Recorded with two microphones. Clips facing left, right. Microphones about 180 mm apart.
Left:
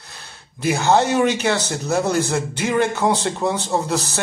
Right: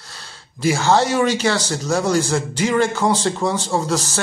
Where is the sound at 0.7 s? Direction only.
20° left (ahead or behind).